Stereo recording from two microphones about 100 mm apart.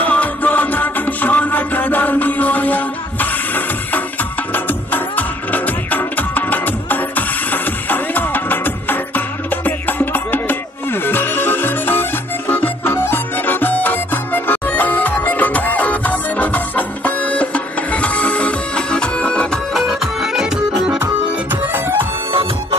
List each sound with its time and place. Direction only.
0.0 s music: 15° left (ahead or behind)
19.9 s music: 5° right (ahead or behind)
21.0 s music: 20° right (ahead or behind)
22.3 s music: 65° right (ahead or behind)